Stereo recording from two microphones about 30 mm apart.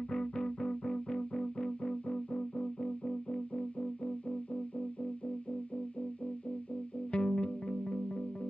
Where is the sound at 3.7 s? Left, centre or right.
Left.